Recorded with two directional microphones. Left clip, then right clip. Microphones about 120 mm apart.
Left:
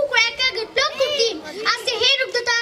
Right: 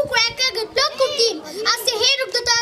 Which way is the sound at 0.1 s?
20° right (ahead or behind).